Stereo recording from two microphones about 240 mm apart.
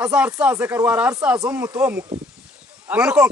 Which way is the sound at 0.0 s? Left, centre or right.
Centre.